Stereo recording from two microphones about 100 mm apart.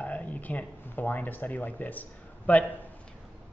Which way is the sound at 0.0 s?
15° left (ahead or behind).